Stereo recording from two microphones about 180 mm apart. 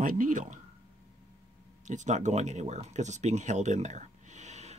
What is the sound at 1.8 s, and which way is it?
Speech, 45° right (ahead or behind).